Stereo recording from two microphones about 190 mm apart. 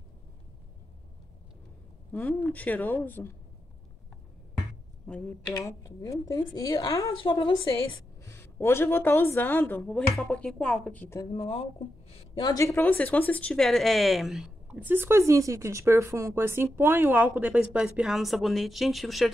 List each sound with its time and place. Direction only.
2.1 s a woman's voice: 10° left (ahead or behind)
5.0 s a woman's voice: 5° left (ahead or behind); by 7.6 s 25° left (ahead or behind)
7.9 s a woman's voice: 15° left (ahead or behind)
11.3 s a woman's voice: 30° left (ahead or behind); by 19.3 s centre (ahead or behind)